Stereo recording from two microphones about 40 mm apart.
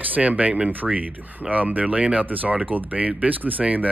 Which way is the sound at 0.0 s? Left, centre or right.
Right.